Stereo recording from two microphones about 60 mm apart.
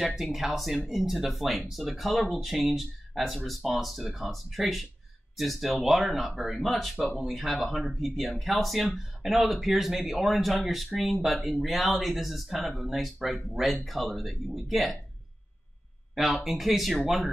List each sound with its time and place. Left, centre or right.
0.0 s speech: centre
16.2 s speech: centre